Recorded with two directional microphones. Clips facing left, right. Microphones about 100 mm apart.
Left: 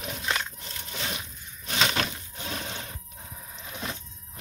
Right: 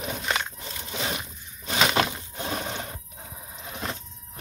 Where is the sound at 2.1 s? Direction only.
45° right (ahead or behind).